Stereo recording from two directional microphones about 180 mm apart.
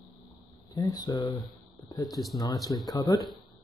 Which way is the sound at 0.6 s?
20° left (ahead or behind).